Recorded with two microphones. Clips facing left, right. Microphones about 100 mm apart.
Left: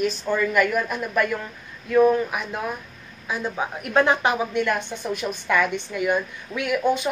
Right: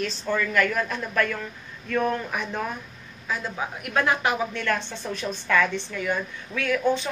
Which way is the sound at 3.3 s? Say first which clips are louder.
Left 3 dB; 20° left (ahead or behind).